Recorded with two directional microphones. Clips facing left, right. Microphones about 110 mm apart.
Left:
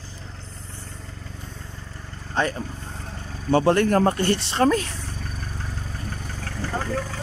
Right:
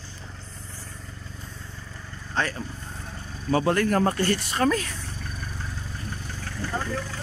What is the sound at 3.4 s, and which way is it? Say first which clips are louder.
Speech: left 4 dB; 30° left (ahead or behind).